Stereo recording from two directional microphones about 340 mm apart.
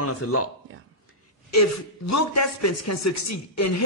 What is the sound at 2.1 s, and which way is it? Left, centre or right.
Speech, left.